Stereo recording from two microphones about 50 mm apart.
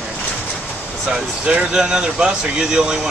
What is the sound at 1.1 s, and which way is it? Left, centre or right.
A man's voice, right.